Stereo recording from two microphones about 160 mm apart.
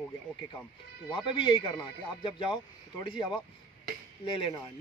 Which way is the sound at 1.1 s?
30° left (ahead or behind).